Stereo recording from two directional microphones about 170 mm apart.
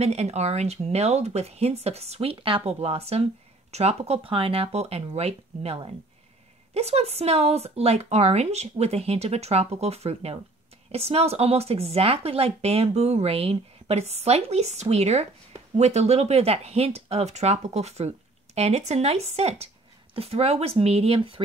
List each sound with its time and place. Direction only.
0.0 s speech: 40° right (ahead or behind)